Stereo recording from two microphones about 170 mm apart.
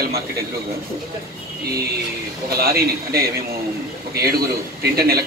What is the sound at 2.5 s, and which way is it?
Speech, 65° right (ahead or behind).